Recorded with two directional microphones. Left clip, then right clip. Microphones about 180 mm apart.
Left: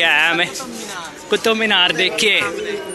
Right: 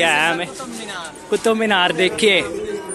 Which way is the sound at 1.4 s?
30° right (ahead or behind).